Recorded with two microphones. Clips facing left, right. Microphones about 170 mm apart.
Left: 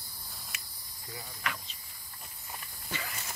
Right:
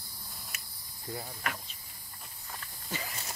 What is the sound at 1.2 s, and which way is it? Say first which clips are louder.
Speech: even; 50° right (ahead or behind).